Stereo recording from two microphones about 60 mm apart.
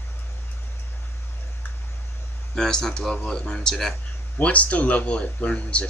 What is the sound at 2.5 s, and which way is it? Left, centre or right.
Speech, centre.